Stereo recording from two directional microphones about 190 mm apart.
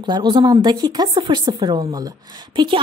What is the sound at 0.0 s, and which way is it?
Speech, 20° right (ahead or behind).